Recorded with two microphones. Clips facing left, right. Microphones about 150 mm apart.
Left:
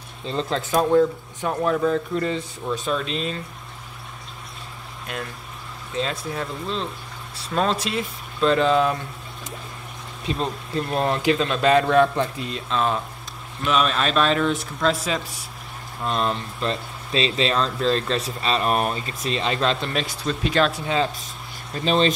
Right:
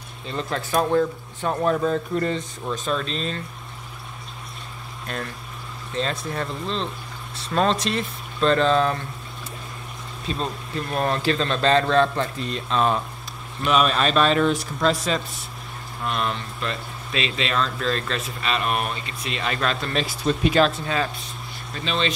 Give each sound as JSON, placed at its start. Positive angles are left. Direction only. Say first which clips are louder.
{"t": 0.3, "sound": "speech", "louder": "left 2 dB", "side_deg": 25}
{"t": 1.7, "sound": "speech", "louder": "left 1 dB", "side_deg": -5}
{"t": 5.9, "sound": "speech", "louder": "even", "side_deg": 5}
{"t": 10.2, "sound": "speech", "louder": "left 2 dB", "side_deg": 20}
{"t": 16.0, "sound": "speech", "louder": "left 2 dB", "side_deg": 30}
{"t": 19.4, "sound": "speech", "louder": "left 2 dB", "side_deg": 25}
{"t": 19.9, "sound": "speech", "louder": "right 1 dB", "side_deg": 0}
{"t": 20.2, "sound": "speech", "louder": "right 3 dB", "side_deg": -15}
{"t": 20.7, "sound": "speech", "louder": "left 2 dB", "side_deg": 20}
{"t": 21.7, "sound": "speech", "louder": "left 6 dB", "side_deg": 40}